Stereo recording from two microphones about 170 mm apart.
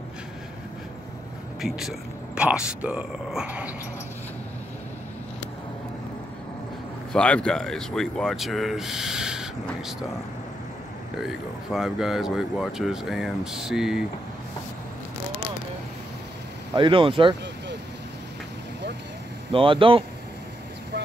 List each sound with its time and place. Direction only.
1.6 s speech: centre (ahead or behind)
7.1 s speech: 5° left (ahead or behind)
11.1 s speech: centre (ahead or behind)
16.7 s speech: 30° right (ahead or behind)
19.5 s speech: 30° right (ahead or behind)